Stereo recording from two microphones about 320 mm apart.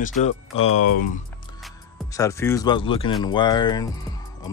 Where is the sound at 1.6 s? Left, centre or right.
Centre.